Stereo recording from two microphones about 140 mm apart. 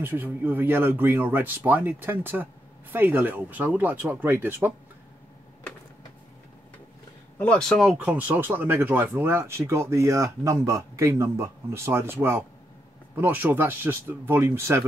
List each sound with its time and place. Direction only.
0.0 s speech: 15° right (ahead or behind)
7.3 s speech: 5° left (ahead or behind)
7.9 s speech: 10° right (ahead or behind)